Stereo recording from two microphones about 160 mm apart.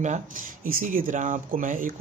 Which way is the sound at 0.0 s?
50° right (ahead or behind).